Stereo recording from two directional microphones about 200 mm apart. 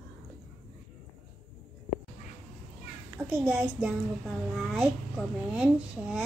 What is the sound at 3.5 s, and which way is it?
A child's voice, 5° right (ahead or behind).